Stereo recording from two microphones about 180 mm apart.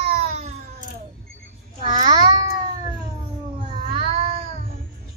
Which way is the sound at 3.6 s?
30° right (ahead or behind).